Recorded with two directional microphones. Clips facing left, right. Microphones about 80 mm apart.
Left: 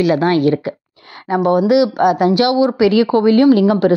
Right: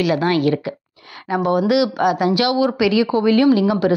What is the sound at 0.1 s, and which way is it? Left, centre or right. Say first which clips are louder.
A woman's voice: left 4 dB; left.